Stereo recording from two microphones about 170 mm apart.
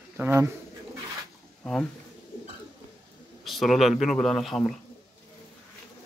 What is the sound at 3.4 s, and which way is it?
Speech, centre (ahead or behind).